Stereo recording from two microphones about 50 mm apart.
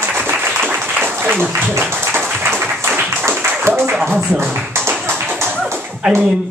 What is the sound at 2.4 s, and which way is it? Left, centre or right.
Applause, right.